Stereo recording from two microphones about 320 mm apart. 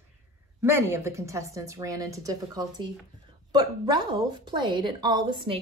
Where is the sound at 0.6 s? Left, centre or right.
Centre.